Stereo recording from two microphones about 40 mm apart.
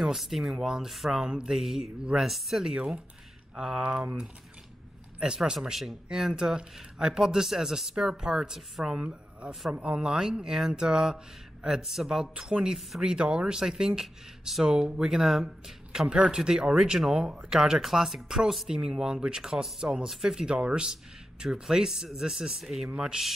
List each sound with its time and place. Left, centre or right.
0.0 s speech: centre
1.2 s speech: right
1.5 s speech: centre
2.6 s speech: centre
5.2 s speech: centre
8.8 s speech: right; by 18.7 s centre
18.9 s speech: centre